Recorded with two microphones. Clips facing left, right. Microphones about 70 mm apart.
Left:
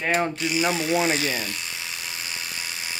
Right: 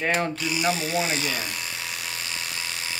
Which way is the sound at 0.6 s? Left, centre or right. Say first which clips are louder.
Left 3 dB; left.